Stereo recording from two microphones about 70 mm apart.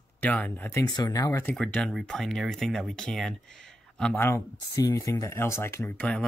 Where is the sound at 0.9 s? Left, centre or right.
Left.